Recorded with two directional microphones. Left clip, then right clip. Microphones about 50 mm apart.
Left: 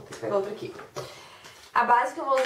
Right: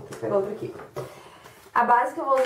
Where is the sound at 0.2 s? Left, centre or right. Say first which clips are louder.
Right 3 dB; left.